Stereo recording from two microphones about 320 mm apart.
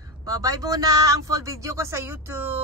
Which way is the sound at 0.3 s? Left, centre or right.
Centre.